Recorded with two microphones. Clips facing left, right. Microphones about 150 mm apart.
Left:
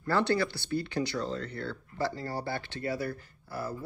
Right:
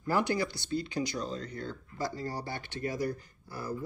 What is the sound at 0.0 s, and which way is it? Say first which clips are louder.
Speech: left 2 dB; 15° right (ahead or behind).